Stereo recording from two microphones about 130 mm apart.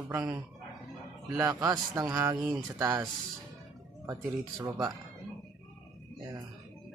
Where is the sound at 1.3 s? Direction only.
25° right (ahead or behind).